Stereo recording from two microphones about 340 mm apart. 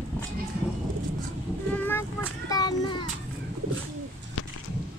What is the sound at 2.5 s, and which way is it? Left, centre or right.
Child singing, centre.